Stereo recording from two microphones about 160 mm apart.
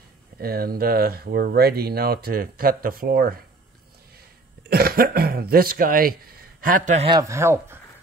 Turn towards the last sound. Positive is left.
turn(degrees=-15)  # may be behind; listen again after turning